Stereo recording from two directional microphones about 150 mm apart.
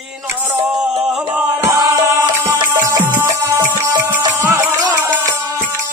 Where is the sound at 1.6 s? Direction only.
20° right (ahead or behind).